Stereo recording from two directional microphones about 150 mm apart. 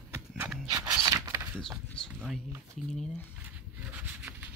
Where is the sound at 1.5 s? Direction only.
5° left (ahead or behind).